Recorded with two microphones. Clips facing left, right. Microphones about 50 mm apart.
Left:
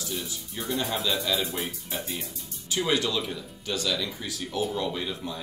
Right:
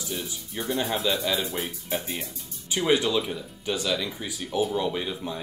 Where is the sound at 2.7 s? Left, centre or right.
Right.